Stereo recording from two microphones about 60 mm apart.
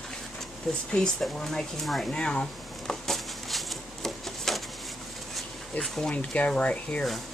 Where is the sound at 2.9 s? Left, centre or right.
Centre.